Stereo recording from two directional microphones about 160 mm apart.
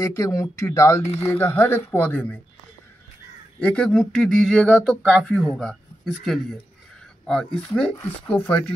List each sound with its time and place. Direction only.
0.0 s speech: 20° left (ahead or behind)
3.5 s speech: 10° left (ahead or behind)